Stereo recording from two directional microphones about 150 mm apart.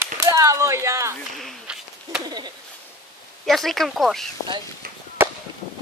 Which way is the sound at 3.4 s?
Centre (ahead or behind).